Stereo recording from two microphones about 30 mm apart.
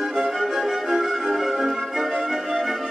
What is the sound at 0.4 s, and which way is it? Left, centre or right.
Music, centre.